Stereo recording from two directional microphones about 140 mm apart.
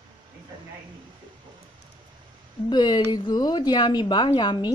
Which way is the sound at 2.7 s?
30° left (ahead or behind).